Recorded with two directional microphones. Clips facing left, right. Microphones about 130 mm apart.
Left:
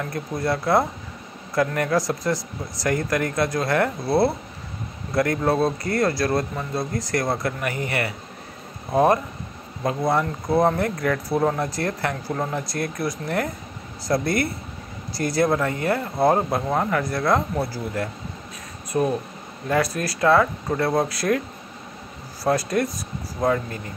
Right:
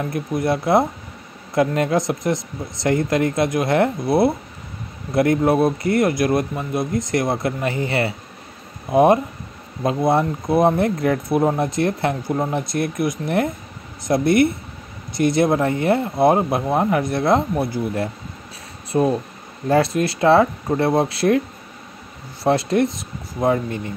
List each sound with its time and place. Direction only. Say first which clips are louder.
0.0 s speech: right 4 dB; 20° right (ahead or behind)
22.4 s speech: right 4 dB; 25° right (ahead or behind)